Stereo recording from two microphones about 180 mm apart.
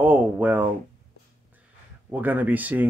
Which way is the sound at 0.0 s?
10° right (ahead or behind).